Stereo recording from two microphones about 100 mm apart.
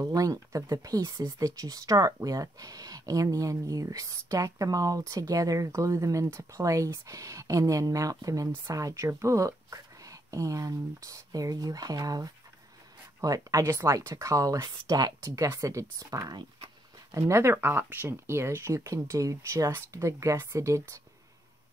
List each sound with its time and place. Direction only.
0.0 s speech: 35° right (ahead or behind)